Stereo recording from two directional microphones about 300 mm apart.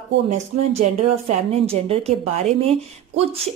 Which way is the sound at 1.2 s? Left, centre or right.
Right.